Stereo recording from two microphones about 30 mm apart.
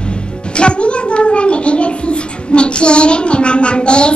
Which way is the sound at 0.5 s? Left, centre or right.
Left.